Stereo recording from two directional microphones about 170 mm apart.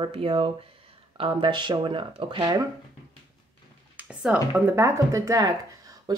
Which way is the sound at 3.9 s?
10° right (ahead or behind).